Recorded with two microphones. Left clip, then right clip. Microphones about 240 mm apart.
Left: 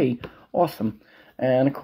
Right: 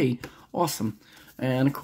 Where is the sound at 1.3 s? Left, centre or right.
Centre.